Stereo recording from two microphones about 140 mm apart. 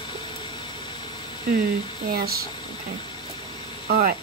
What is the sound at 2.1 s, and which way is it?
Speech, 90° right.